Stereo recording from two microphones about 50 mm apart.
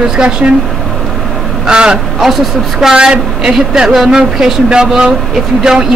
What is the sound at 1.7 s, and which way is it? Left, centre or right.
A woman's voice, centre.